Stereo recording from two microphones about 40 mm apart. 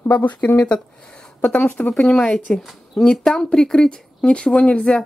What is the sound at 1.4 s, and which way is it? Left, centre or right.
Speech, left.